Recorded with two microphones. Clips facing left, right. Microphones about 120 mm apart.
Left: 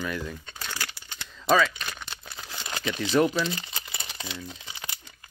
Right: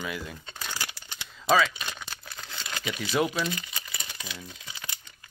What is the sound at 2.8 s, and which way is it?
Speech, 10° right (ahead or behind).